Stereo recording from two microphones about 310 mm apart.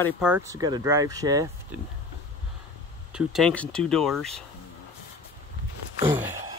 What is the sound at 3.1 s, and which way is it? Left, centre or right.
Speech, centre.